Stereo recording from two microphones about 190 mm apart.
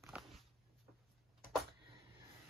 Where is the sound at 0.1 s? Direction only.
5° right (ahead or behind).